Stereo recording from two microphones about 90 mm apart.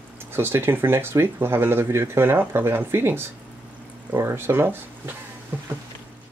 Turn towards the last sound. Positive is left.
turn(degrees=-20)  # may be behind; listen again after turning